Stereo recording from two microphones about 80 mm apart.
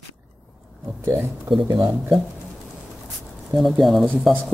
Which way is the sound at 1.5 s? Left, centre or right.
Right.